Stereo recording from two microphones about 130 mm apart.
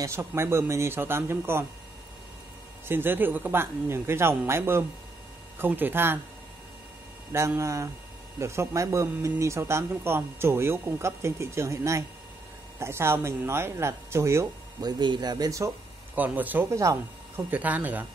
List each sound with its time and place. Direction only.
0.0 s speech: 20° right (ahead or behind)
2.9 s speech: 15° right (ahead or behind)
7.3 s speech: 20° right (ahead or behind)
14.8 s speech: 35° right (ahead or behind)
16.2 s speech: 15° right (ahead or behind)